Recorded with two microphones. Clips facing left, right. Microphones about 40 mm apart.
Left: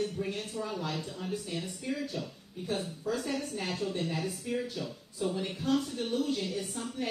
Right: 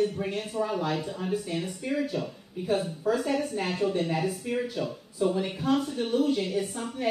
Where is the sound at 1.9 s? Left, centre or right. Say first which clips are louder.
Right 7 dB; right.